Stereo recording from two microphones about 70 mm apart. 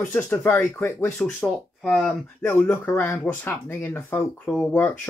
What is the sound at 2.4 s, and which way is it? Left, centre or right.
Speech, left.